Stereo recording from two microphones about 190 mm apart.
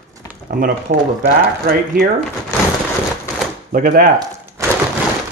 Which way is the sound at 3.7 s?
45° right (ahead or behind).